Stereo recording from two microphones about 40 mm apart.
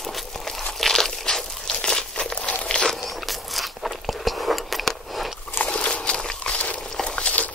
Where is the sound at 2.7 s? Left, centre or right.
Left.